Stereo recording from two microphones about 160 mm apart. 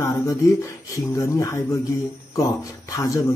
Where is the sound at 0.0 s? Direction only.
20° left (ahead or behind).